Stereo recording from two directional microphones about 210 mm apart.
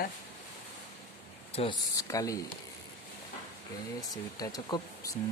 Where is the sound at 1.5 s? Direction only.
25° left (ahead or behind).